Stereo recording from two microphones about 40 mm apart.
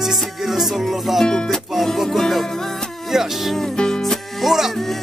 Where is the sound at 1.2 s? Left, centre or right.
Centre.